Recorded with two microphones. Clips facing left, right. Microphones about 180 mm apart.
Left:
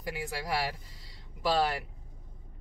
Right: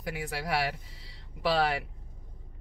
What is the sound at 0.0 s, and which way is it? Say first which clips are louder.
Speech: right 1 dB; 60° right (ahead or behind).